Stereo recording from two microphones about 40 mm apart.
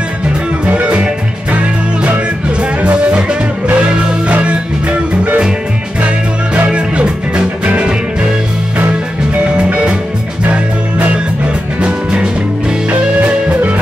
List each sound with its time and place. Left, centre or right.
0.7 s music: right
3.0 s music: right
5.9 s music: right
9.6 s music: right
10.4 s music: right
11.8 s music: right